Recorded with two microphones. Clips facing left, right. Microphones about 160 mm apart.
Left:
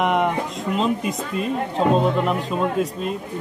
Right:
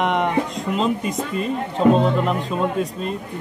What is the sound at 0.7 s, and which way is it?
Speech, centre (ahead or behind).